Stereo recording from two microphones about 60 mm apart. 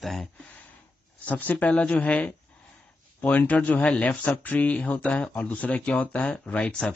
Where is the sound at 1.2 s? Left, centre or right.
Left.